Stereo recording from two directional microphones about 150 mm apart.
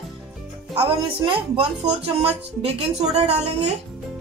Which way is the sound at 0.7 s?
40° right (ahead or behind).